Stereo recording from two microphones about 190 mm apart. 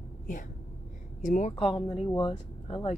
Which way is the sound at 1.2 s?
40° left (ahead or behind).